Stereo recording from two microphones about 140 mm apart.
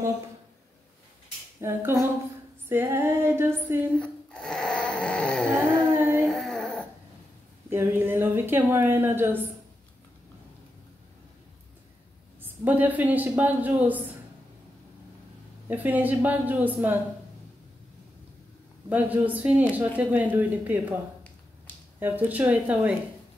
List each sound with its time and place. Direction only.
1.6 s speech: 15° right (ahead or behind)
4.0 s a sound: 5° left (ahead or behind)
5.9 s a sound: 15° right (ahead or behind)
6.2 s a sound: 5° left (ahead or behind)
7.7 s speech: 15° right (ahead or behind)
12.4 s speech: 10° right (ahead or behind)
15.7 s speech: 10° right (ahead or behind)
18.9 s speech: 10° right (ahead or behind)
22.0 s speech: 10° right (ahead or behind)